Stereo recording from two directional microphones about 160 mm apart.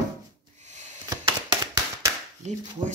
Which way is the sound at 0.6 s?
50° right (ahead or behind).